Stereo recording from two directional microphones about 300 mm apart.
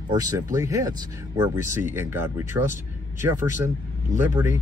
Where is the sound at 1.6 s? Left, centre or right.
Left.